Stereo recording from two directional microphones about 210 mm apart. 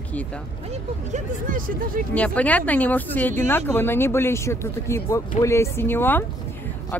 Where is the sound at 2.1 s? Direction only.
5° left (ahead or behind).